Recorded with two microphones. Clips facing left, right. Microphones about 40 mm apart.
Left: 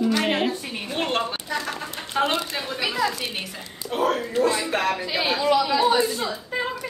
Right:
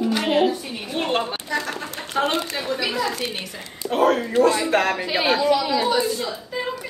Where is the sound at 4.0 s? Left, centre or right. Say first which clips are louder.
Right 4 dB; right.